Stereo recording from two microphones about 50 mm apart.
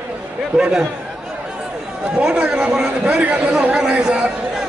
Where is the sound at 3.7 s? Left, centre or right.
Centre.